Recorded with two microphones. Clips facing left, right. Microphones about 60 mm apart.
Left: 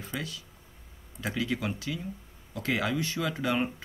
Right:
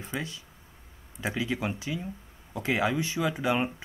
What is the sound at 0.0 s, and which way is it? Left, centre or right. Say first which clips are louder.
Speech: right 2 dB; right.